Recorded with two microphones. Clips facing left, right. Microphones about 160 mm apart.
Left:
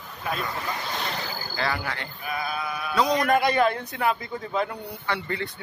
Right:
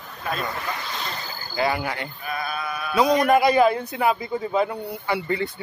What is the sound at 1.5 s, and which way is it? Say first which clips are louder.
A man's voice: right 6 dB; 15° right (ahead or behind).